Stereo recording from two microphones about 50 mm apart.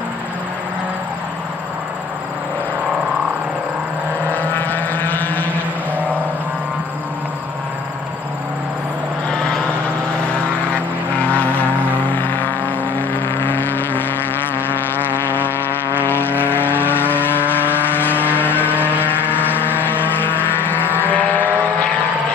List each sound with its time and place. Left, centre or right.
4.3 s vehicle: left
11.1 s vehicle: left